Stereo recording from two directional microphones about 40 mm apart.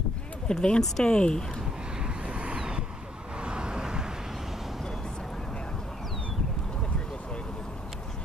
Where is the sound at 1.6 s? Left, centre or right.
Centre.